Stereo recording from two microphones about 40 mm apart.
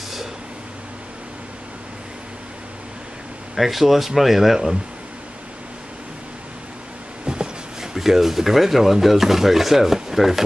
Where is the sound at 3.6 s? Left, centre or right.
Centre.